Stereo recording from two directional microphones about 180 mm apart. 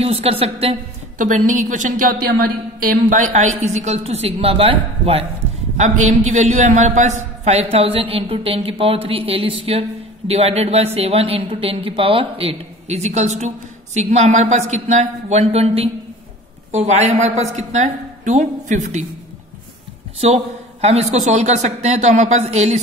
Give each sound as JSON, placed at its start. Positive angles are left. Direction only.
{"t": 0.0, "sound": "a woman's voice", "side_deg": -35}
{"t": 20.2, "sound": "a man's voice", "side_deg": -35}